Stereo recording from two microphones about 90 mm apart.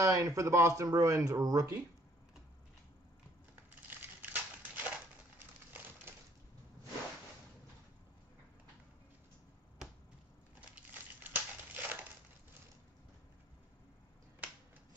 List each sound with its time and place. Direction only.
0.0 s speech: 35° right (ahead or behind)
3.9 s a sound: 20° right (ahead or behind)
10.7 s crumpling: 20° right (ahead or behind)